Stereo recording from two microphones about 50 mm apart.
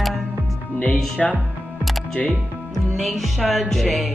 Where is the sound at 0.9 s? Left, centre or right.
Centre.